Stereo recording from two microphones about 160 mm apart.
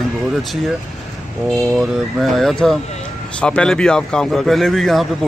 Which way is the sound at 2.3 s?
Centre (ahead or behind).